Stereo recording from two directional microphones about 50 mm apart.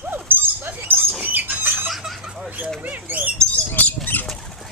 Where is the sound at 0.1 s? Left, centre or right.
Right.